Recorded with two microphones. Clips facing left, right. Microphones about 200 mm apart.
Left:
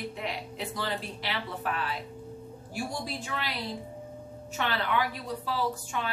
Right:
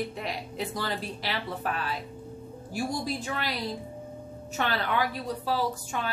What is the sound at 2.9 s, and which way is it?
Speech, 40° right (ahead or behind).